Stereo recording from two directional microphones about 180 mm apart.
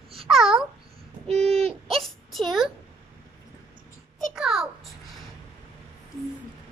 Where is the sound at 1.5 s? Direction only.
35° right (ahead or behind).